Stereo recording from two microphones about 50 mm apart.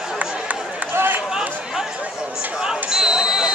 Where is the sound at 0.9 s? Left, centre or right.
Right.